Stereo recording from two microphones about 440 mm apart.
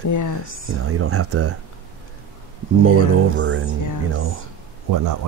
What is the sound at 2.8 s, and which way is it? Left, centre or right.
Speech, right.